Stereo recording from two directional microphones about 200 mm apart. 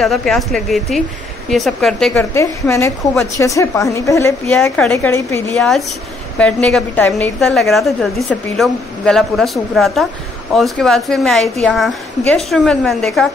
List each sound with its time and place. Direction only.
0.0 s a woman's voice: centre (ahead or behind)
2.3 s a woman's voice: 15° left (ahead or behind)